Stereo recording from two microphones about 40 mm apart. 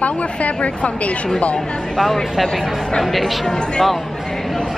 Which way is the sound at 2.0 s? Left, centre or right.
Centre.